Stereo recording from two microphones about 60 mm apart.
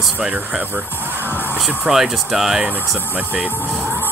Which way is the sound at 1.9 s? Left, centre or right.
Centre.